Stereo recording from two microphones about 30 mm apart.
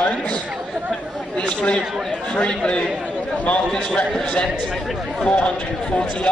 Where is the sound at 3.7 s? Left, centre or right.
Left.